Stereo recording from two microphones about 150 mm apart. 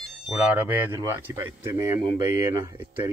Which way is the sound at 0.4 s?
10° right (ahead or behind).